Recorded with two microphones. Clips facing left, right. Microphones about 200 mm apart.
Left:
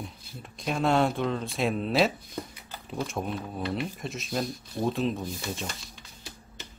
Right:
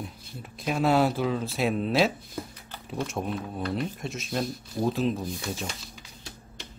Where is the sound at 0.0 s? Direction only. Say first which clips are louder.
Right 2 dB; 5° right (ahead or behind).